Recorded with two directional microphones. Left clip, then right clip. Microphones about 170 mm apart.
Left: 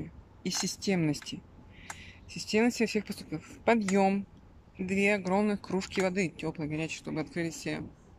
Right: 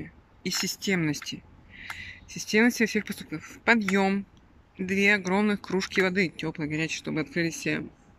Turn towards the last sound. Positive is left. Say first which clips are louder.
# right 7 dB
turn(degrees=0)  # may be behind; listen again after turning